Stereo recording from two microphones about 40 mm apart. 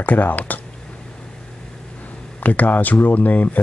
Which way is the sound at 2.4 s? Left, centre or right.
Left.